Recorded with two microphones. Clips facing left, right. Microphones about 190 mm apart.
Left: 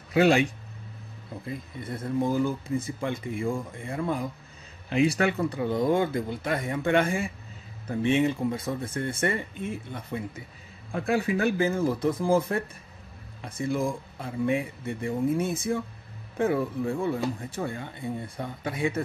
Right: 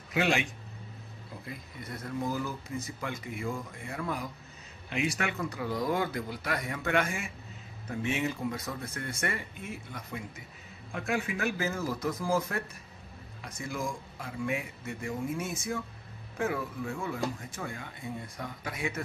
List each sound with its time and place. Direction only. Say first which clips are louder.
0.1 s speech: left 8 dB; 35° left (ahead or behind)
13.4 s speech: left 8 dB; 30° left (ahead or behind)